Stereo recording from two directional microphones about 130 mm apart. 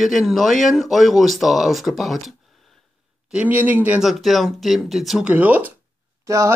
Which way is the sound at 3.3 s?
15° right (ahead or behind).